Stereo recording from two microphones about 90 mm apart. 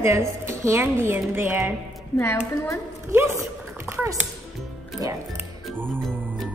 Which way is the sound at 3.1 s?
30° right (ahead or behind).